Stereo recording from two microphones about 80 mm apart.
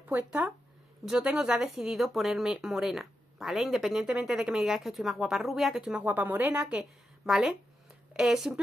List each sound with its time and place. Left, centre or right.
0.0 s speech: centre
6.0 s a woman's voice: right
6.8 s a woman's voice: centre